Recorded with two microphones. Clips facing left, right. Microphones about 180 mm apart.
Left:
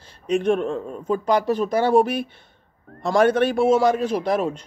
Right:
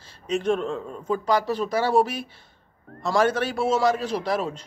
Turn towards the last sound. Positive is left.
turn(degrees=50)  # may be behind; listen again after turning